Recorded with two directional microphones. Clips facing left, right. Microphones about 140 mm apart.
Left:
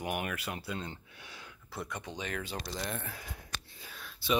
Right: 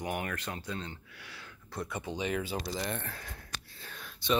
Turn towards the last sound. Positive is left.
turn(degrees=5)  # may be behind; listen again after turning